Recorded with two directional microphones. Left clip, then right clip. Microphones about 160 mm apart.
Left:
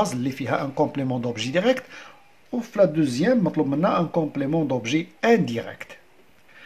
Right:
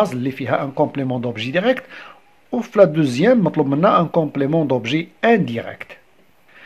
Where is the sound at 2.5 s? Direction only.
45° right (ahead or behind); by 5.9 s 20° right (ahead or behind).